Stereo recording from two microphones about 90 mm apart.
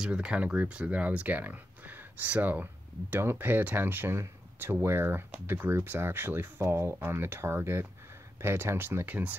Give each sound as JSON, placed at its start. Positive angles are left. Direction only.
{"t": 0.0, "sound": "speech", "side_deg": -10}